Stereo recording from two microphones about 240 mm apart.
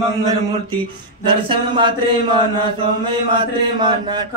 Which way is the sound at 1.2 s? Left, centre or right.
Right.